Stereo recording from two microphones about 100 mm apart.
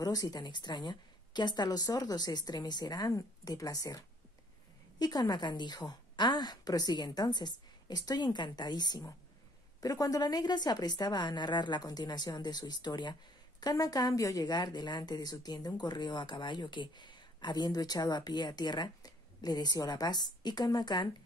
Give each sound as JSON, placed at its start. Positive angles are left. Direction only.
{"t": 0.0, "sound": "a woman's voice", "side_deg": 40}